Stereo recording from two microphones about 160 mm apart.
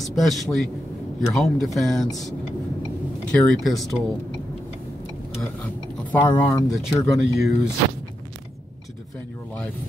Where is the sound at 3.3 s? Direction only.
Centre (ahead or behind).